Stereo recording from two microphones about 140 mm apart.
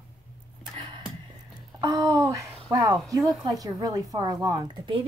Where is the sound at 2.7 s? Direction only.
25° right (ahead or behind).